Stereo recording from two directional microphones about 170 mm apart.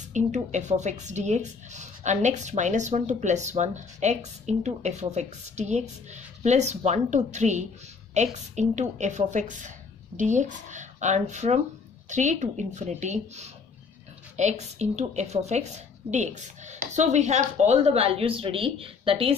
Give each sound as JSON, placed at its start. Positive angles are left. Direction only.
{"t": 0.1, "sound": "a woman's voice", "side_deg": -45}